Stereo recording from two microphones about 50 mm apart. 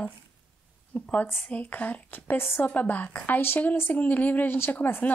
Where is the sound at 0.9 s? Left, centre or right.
Left.